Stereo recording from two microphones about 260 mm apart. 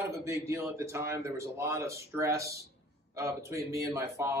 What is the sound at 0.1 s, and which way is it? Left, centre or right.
A man's voice, centre.